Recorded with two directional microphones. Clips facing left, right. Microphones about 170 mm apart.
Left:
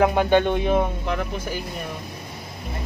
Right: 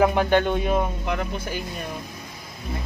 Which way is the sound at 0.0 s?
20° left (ahead or behind).